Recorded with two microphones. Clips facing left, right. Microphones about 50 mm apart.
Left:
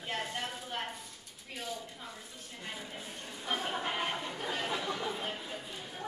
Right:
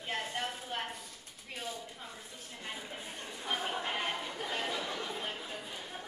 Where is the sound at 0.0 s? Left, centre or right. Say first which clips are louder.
Even; centre.